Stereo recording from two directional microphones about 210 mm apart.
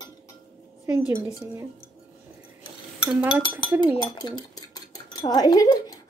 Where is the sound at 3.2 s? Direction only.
5° right (ahead or behind).